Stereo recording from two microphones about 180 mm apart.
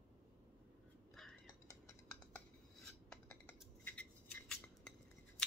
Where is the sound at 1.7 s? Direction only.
15° left (ahead or behind).